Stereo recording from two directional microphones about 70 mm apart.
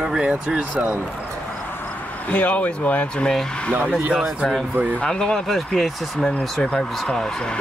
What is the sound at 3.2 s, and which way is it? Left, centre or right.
Speech, centre.